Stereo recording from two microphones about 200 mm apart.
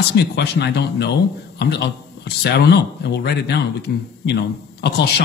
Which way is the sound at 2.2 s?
55° left (ahead or behind).